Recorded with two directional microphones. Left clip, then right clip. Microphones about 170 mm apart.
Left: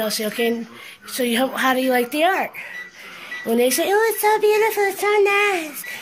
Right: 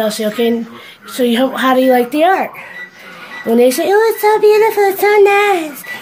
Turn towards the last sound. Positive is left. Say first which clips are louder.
# right 8 dB
turn(degrees=-5)  # may be behind; listen again after turning